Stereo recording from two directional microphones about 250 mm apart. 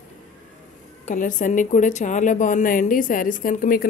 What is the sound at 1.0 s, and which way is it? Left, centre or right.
A woman's voice, left.